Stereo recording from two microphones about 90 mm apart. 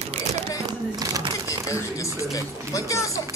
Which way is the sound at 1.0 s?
40° right (ahead or behind).